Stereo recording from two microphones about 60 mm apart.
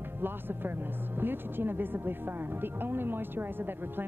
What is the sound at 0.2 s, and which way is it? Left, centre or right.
A woman's voice, right.